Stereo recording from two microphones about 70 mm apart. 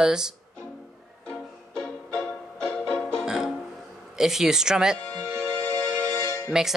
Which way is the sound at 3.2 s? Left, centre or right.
Centre.